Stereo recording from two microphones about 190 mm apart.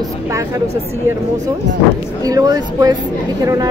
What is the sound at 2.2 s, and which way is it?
Speech, 20° right (ahead or behind).